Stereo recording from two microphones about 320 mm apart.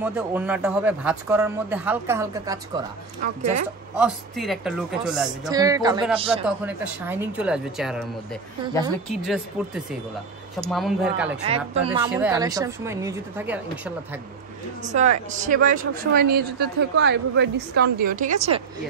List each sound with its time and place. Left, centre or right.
0.0 s a man's voice: centre
3.9 s a man's voice: centre
6.4 s a man's voice: centre
9.1 s a man's voice: centre
10.7 s a man's voice: centre
11.4 s a woman's voice: centre
12.1 s a woman's voice: centre
15.0 s a woman's voice: right